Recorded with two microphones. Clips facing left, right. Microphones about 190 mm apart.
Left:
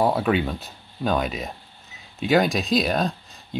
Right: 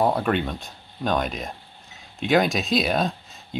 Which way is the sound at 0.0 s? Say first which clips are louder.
Left 1 dB; centre (ahead or behind).